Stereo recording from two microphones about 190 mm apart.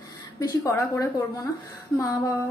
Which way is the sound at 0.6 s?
15° left (ahead or behind).